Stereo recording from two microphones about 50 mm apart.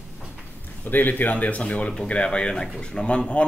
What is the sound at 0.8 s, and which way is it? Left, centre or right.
Speech, left.